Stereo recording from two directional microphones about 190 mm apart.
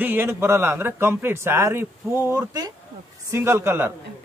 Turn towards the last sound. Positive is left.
turn(degrees=-10)  # may be behind; listen again after turning